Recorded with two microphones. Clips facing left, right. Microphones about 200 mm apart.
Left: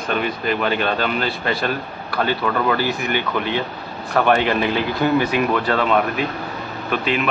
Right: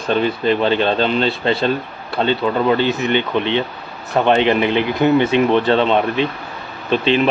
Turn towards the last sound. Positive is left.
turn(degrees=-25)  # may be behind; listen again after turning